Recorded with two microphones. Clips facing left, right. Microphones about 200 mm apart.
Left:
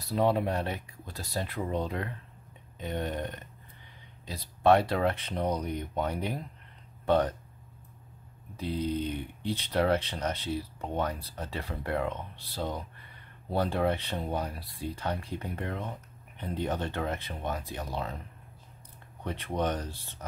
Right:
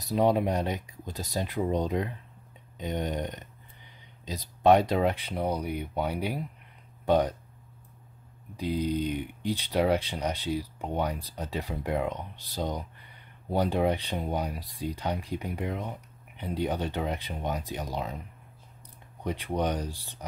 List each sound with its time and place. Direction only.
0.0 s speech: 15° right (ahead or behind)
8.5 s speech: 15° right (ahead or behind)
19.2 s speech: 15° right (ahead or behind)